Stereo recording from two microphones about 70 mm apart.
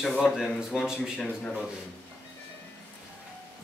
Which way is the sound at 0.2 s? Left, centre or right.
Centre.